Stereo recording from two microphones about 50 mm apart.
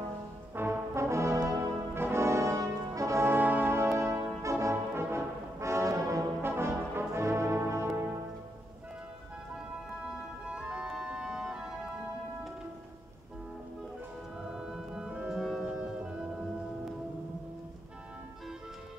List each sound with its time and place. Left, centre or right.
0.6 s brass instrument: right
0.9 s brass instrument: right
2.0 s brass instrument: right
3.3 s brass instrument: right
3.7 s music: right
4.4 s brass instrument: right
4.9 s brass instrument: right
6.4 s brass instrument: right
10.5 s music: centre
14.5 s organ: centre
15.5 s music: centre